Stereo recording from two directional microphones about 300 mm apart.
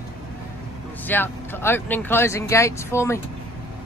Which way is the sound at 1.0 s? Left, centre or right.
Centre.